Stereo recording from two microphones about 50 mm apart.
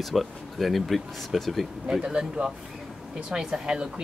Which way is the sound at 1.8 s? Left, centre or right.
Centre.